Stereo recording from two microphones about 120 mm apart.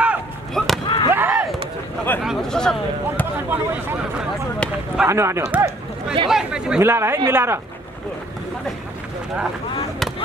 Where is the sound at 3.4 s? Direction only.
15° right (ahead or behind).